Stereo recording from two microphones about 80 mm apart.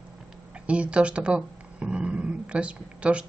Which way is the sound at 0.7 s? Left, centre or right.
Centre.